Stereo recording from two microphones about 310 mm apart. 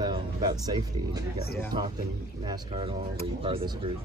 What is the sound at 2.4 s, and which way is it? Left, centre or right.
Speech, centre.